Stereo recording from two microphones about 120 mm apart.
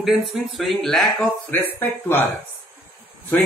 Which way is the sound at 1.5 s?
15° left (ahead or behind).